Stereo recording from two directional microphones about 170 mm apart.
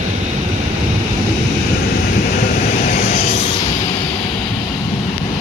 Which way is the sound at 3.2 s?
35° left (ahead or behind).